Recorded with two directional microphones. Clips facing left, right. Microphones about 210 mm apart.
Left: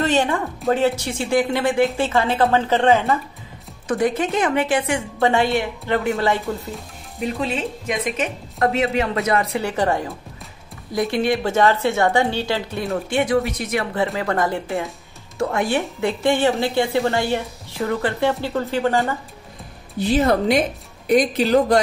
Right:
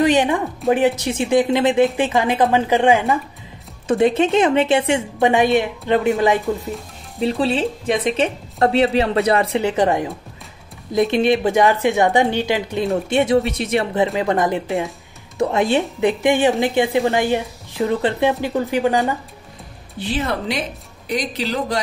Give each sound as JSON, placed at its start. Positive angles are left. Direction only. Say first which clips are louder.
{"t": 0.0, "sound": "music", "louder": "right 4 dB", "side_deg": -15}
{"t": 0.7, "sound": "a woman's voice", "louder": "right 2 dB", "side_deg": -15}
{"t": 3.8, "sound": "a woman's voice", "louder": "right 4 dB", "side_deg": -25}
{"t": 7.2, "sound": "a woman's voice", "louder": "right 5 dB", "side_deg": -30}
{"t": 20.0, "sound": "speech", "louder": "left 5 dB", "side_deg": 45}